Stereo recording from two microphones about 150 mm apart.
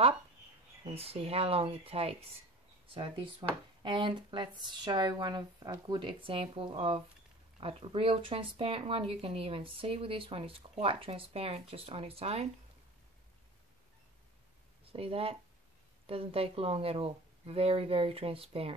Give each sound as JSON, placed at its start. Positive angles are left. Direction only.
{"t": 0.8, "sound": "speech", "side_deg": -40}
{"t": 14.9, "sound": "speech", "side_deg": -40}